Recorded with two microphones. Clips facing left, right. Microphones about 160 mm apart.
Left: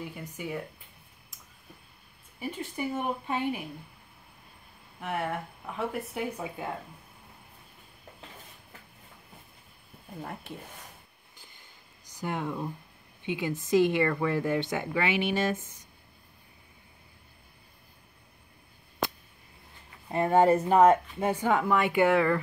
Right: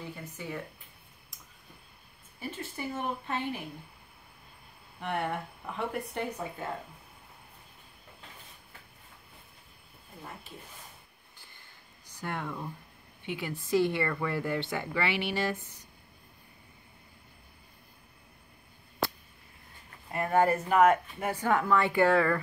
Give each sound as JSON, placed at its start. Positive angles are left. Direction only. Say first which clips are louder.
{"t": 0.1, "sound": "speech", "louder": "left 3 dB", "side_deg": 15}
{"t": 2.4, "sound": "speech", "louder": "left 4 dB", "side_deg": 15}
{"t": 5.0, "sound": "speech", "louder": "even", "side_deg": 0}
{"t": 11.3, "sound": "a sound", "louder": "left 2 dB", "side_deg": 15}
{"t": 12.2, "sound": "speech", "louder": "left 4 dB", "side_deg": 15}
{"t": 20.1, "sound": "a woman's voice", "louder": "left 4 dB", "side_deg": 25}